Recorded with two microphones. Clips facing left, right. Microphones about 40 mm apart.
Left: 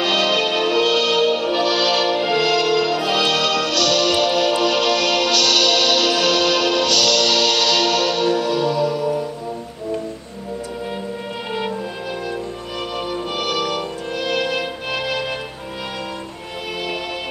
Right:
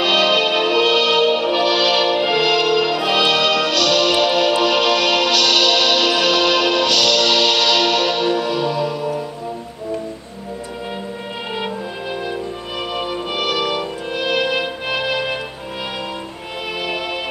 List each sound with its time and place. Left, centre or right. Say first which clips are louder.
0.0 s music: right 3 dB; centre
12.9 s music: right 1 dB; centre